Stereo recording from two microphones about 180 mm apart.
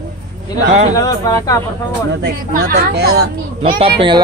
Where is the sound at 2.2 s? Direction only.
60° right (ahead or behind).